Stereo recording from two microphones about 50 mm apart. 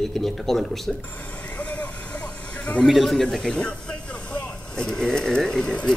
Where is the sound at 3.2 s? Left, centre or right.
Centre.